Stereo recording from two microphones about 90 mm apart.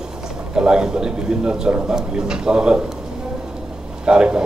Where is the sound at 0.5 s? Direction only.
10° right (ahead or behind).